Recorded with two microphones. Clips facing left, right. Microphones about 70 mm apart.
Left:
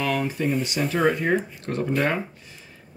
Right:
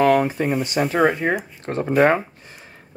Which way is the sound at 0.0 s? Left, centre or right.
Right.